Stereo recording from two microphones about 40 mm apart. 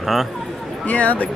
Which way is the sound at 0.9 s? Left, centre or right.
Left.